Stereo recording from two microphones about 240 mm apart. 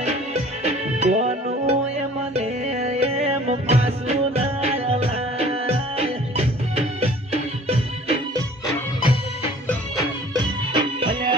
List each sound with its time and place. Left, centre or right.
0.0 s music: right
9.0 s music: left
10.3 s music: centre